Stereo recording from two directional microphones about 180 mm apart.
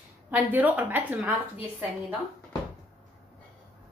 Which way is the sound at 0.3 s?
10° right (ahead or behind).